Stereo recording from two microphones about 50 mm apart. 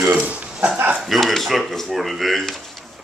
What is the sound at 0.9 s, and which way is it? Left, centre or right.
Speech, centre.